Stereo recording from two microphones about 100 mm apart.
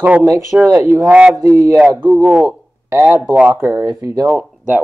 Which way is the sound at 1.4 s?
30° right (ahead or behind).